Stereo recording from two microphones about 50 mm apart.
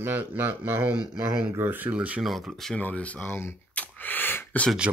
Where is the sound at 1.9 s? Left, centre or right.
Right.